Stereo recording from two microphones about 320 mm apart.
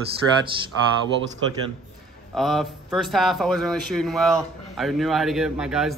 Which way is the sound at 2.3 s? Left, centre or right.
Centre.